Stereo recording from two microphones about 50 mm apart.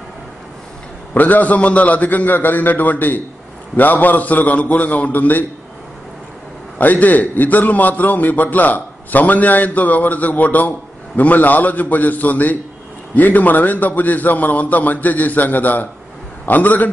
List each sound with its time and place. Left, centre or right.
1.1 s a man's voice: left
6.8 s a man's voice: left